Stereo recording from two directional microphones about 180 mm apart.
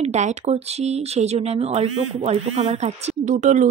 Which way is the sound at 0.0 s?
40° right (ahead or behind).